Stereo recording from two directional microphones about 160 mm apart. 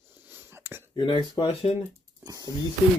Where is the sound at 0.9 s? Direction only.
30° left (ahead or behind).